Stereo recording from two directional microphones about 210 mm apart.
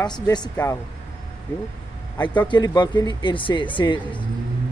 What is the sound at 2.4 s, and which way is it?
Speech, 20° left (ahead or behind).